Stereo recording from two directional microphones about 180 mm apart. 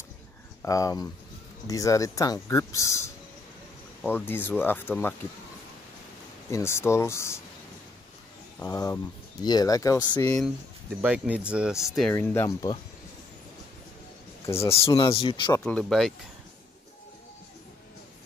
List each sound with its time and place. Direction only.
0.6 s speech: 20° left (ahead or behind)
6.5 s speech: 15° left (ahead or behind)
8.5 s speech: 20° left (ahead or behind)
11.0 s speech: 10° right (ahead or behind)
12.1 s speech: 15° left (ahead or behind)
14.4 s speech: 15° left (ahead or behind)
15.6 s speech: 5° left (ahead or behind)